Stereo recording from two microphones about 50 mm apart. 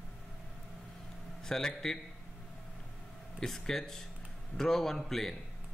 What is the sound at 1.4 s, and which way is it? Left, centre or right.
Speech, centre.